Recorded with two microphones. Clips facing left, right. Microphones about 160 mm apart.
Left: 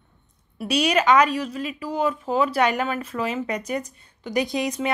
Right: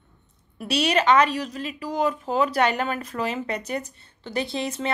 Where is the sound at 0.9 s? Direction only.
10° left (ahead or behind).